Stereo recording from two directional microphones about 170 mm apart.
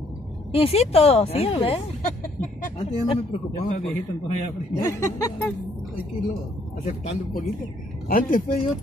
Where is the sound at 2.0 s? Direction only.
50° left (ahead or behind).